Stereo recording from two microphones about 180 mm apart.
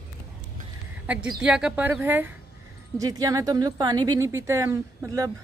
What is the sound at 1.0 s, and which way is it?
Speech, 5° right (ahead or behind).